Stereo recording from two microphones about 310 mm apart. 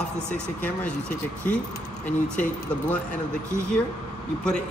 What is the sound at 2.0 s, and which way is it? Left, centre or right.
Speech, centre.